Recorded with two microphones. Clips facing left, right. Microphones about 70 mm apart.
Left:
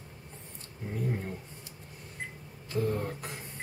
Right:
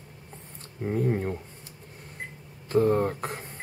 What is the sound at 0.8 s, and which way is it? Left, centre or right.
Speech, right.